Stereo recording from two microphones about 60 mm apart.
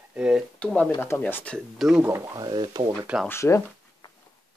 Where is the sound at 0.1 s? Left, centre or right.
Centre.